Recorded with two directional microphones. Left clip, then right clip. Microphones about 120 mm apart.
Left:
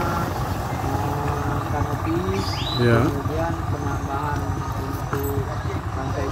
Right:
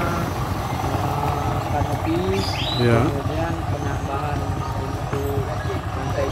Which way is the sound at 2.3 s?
10° left (ahead or behind).